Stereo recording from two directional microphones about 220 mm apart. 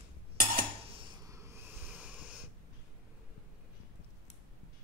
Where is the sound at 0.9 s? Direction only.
25° right (ahead or behind).